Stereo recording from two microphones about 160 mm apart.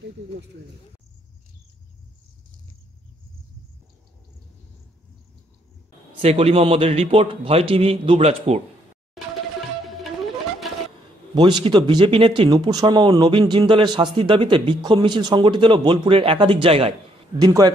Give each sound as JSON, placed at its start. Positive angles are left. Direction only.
{"t": 6.2, "sound": "a man's voice", "side_deg": -40}
{"t": 11.3, "sound": "speech", "side_deg": -30}
{"t": 17.4, "sound": "speech", "side_deg": -25}